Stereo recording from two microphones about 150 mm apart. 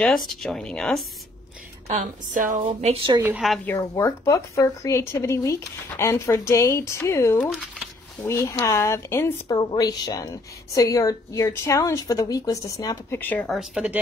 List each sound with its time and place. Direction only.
0.0 s speech: centre (ahead or behind)
1.9 s a woman's voice: 55° right (ahead or behind)
2.6 s a woman's voice: 40° right (ahead or behind)
3.2 s speech: 10° right (ahead or behind)
3.6 s speech: 15° left (ahead or behind)
7.5 s a sound: 5° right (ahead or behind)
8.2 s speech: 20° left (ahead or behind)
9.6 s speech: 25° left (ahead or behind)
13.2 s speech: 10° left (ahead or behind)
13.6 s speech: 5° right (ahead or behind)